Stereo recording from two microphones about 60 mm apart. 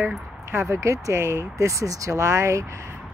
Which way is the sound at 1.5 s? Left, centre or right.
Right.